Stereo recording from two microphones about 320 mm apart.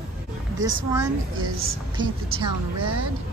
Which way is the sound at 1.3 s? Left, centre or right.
Right.